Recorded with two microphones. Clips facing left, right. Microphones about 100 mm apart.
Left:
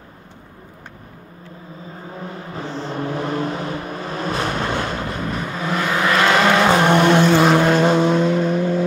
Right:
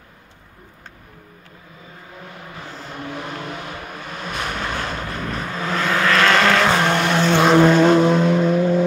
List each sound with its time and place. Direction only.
2.5 s vehicle: 30° left (ahead or behind)
7.2 s vehicle: 5° left (ahead or behind)